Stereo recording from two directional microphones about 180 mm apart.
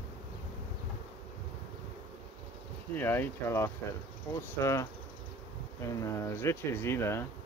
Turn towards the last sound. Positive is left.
turn(degrees=15)  # may be behind; listen again after turning